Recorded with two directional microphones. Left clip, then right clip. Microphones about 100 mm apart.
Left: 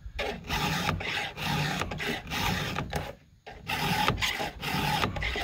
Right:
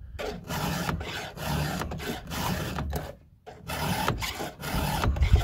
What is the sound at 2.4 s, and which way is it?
Printer, 30° left (ahead or behind).